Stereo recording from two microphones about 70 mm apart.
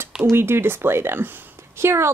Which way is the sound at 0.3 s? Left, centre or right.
Right.